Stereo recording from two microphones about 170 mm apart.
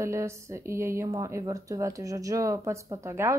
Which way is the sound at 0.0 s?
15° right (ahead or behind).